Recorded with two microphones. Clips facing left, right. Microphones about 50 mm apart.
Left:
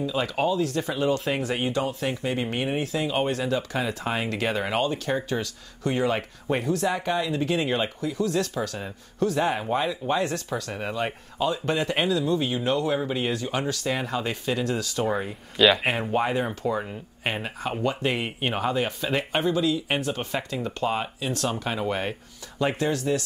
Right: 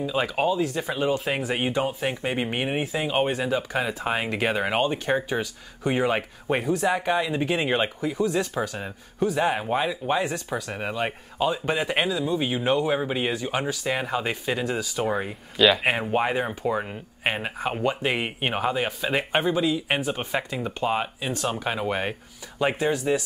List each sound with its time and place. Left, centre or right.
0.0 s speech: centre
16.1 s speech: centre